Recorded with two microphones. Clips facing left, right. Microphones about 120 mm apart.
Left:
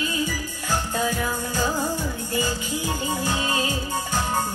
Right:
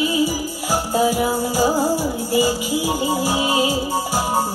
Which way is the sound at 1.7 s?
35° right (ahead or behind).